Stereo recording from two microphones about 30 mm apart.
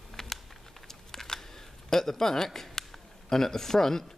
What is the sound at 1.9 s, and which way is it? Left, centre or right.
A man's voice, centre.